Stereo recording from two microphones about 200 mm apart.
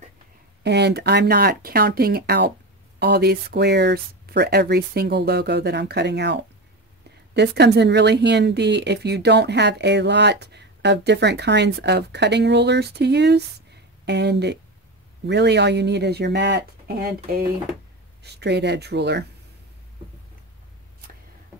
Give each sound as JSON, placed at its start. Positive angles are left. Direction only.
{"t": 0.7, "sound": "speech", "side_deg": -55}